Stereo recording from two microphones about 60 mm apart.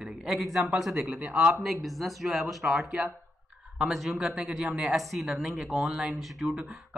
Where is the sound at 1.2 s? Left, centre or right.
Right.